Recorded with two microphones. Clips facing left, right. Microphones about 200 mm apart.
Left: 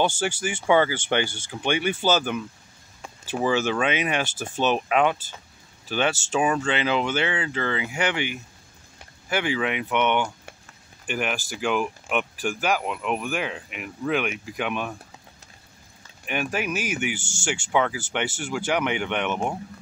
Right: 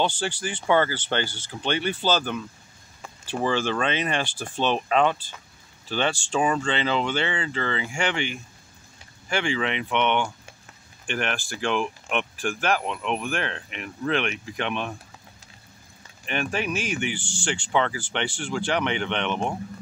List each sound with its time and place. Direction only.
0.4 s speech: 10° left (ahead or behind)
16.3 s speech: 5° left (ahead or behind)
17.2 s speech: 45° left (ahead or behind)
17.5 s speech: 10° left (ahead or behind)